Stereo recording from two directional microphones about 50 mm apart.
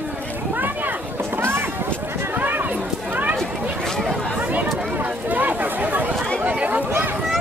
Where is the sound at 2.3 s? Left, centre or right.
Right.